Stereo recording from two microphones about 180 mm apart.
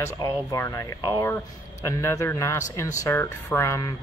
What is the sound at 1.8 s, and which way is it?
Speech, 15° left (ahead or behind).